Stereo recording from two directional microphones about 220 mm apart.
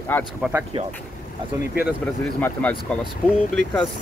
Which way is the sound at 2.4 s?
5° left (ahead or behind).